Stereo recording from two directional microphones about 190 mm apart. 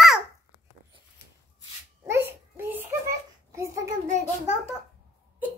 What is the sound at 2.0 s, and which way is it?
Babbling, 15° right (ahead or behind).